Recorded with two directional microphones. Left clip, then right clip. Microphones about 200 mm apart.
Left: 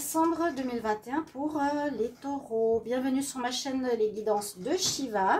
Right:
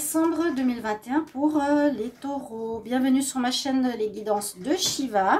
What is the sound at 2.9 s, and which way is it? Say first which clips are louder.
A woman's voice: right 6 dB; 45° right (ahead or behind).